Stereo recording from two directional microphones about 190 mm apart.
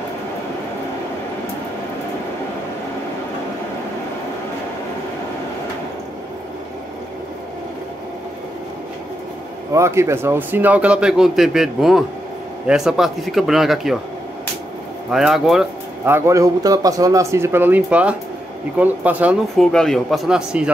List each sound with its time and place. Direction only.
9.8 s a man's voice: 15° right (ahead or behind)
15.0 s a man's voice: centre (ahead or behind)
16.1 s speech: 15° right (ahead or behind)
19.5 s a man's voice: centre (ahead or behind)